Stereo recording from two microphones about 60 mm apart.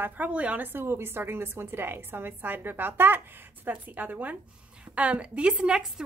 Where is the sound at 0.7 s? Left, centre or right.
Right.